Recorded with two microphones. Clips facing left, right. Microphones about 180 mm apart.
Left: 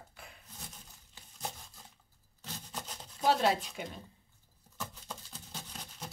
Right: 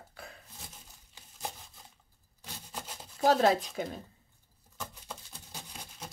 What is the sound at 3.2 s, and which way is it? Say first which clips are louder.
Speech: right 4 dB; 40° right (ahead or behind).